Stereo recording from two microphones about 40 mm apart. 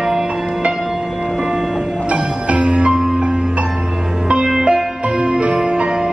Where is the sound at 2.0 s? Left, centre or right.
Right.